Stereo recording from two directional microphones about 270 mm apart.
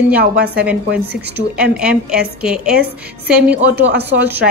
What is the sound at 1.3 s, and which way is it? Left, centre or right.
A woman's voice, centre.